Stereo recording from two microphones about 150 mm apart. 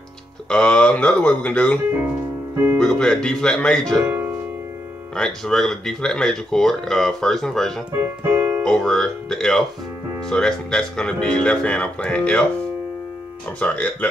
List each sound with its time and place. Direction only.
0.5 s speech: 5° left (ahead or behind)
2.8 s speech: 5° left (ahead or behind)
4.0 s speech: 15° right (ahead or behind)
5.1 s speech: 5° left (ahead or behind)
8.2 s keyboard: 15° right (ahead or behind)
8.6 s speech: 5° left (ahead or behind)
13.6 s speech: 10° left (ahead or behind)